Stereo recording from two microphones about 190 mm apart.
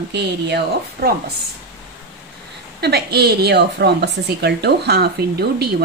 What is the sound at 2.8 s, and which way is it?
A woman's voice, 60° right (ahead or behind).